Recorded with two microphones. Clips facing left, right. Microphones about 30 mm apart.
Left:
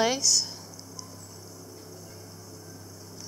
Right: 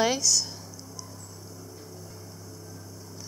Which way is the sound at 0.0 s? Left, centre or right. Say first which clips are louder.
Even; centre.